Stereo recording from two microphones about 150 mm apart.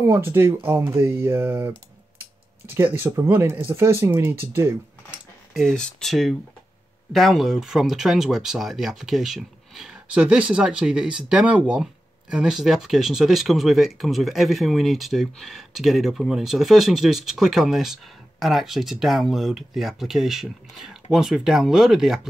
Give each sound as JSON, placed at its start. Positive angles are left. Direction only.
{"t": 0.0, "sound": "speech", "side_deg": -15}
{"t": 2.7, "sound": "speech", "side_deg": -15}
{"t": 5.5, "sound": "speech", "side_deg": 0}